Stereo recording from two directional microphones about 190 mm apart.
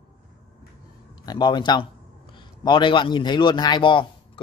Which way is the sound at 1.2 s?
25° left (ahead or behind).